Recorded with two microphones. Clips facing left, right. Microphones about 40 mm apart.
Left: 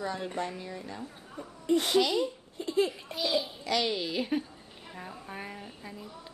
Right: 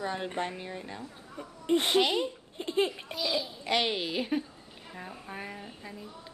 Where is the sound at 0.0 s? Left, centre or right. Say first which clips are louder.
Right 1 dB; right.